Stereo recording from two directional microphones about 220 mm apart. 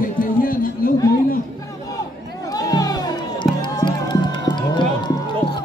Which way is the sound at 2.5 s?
15° left (ahead or behind).